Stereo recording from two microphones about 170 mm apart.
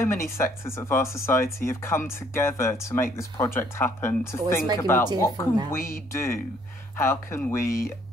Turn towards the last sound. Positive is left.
turn(degrees=15)  # may be behind; listen again after turning